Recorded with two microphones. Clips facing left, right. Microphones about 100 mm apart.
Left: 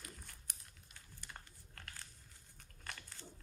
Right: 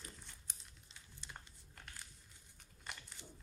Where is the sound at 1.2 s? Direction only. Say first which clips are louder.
Even; 15° right (ahead or behind).